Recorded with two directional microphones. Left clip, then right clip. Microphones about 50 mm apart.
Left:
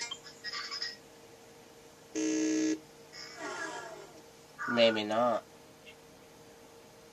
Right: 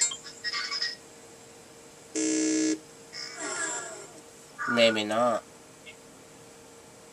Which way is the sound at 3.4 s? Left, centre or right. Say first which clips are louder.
Right 5 dB; right.